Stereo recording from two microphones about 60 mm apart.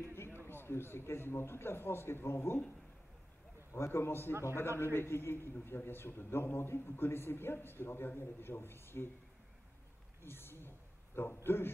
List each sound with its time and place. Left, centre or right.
0.0 s a sound: left
0.5 s a man's voice: left
3.7 s a man's voice: left
4.3 s a man's voice: right
4.6 s a man's voice: left
10.2 s a sound: left
11.4 s a man's voice: left